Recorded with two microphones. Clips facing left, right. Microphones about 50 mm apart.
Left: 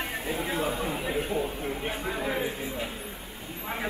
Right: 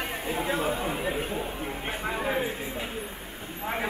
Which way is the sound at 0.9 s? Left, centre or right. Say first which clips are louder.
Left 1 dB; centre.